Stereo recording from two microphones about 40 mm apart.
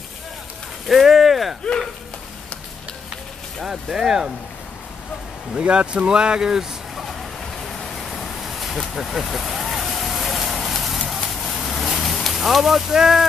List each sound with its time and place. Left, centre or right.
0.8 s a sound: centre
3.6 s speech: centre
5.6 s speech: right
7.6 s vehicle: centre
12.9 s speech: centre